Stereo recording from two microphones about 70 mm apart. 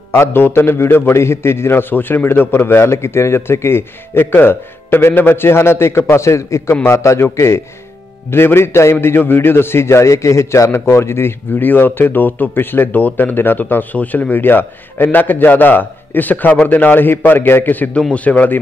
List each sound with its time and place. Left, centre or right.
0.1 s a man's voice: left